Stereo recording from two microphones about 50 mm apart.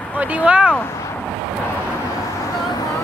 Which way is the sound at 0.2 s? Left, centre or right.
Right.